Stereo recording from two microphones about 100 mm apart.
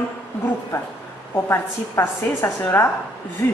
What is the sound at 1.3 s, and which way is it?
A woman's voice, 25° left (ahead or behind).